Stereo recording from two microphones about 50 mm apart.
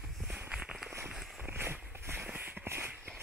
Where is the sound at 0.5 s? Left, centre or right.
Centre.